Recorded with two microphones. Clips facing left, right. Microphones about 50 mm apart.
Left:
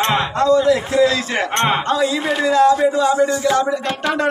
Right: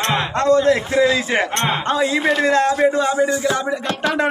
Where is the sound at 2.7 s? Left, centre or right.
Right.